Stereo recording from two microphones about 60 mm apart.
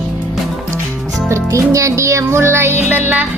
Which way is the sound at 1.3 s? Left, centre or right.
Right.